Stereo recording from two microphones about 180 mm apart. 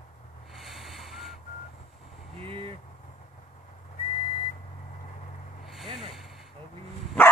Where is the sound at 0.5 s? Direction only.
Centre (ahead or behind).